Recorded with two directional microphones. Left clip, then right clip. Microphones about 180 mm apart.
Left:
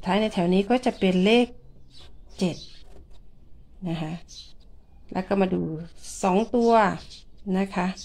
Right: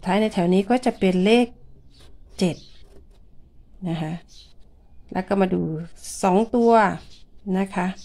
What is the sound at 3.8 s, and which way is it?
A woman's voice, 25° right (ahead or behind).